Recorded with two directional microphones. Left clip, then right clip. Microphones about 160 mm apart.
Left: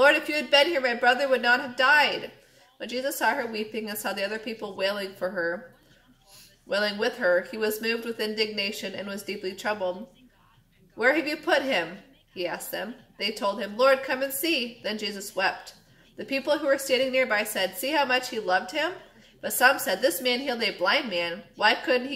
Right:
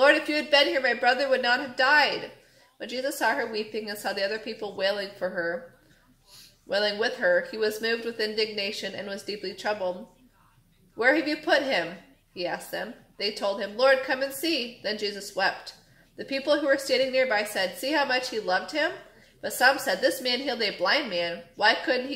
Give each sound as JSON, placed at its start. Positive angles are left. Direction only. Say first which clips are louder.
{"t": 0.0, "sound": "speech", "louder": "even", "side_deg": 0}
{"t": 11.0, "sound": "speech", "louder": "right 1 dB", "side_deg": 0}